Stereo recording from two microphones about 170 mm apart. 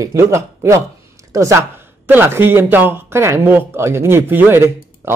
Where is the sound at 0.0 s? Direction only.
15° right (ahead or behind).